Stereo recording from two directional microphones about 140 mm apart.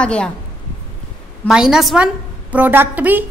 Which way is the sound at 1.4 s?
5° right (ahead or behind).